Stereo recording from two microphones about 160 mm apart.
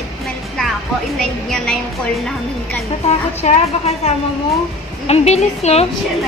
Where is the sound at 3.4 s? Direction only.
40° left (ahead or behind).